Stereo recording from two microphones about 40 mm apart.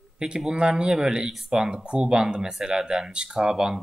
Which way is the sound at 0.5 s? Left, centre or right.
Centre.